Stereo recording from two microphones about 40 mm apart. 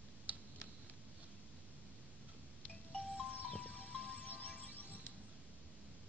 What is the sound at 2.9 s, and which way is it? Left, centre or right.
Music, left.